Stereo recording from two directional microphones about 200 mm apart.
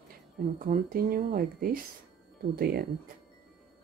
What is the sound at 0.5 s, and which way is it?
Speech, 40° right (ahead or behind).